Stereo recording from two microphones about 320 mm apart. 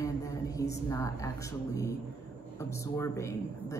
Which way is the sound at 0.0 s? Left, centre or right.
Centre.